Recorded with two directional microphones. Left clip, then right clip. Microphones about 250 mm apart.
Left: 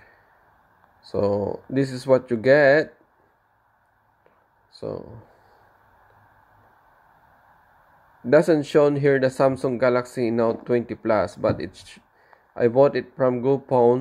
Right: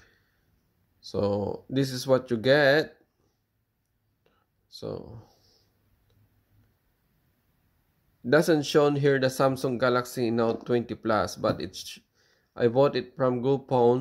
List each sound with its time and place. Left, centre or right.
1.1 s speech: right
4.7 s speech: right
8.3 s speech: right